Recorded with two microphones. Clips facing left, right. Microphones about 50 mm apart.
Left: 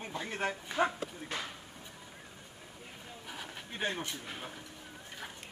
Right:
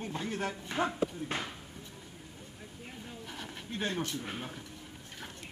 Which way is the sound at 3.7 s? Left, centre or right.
Centre.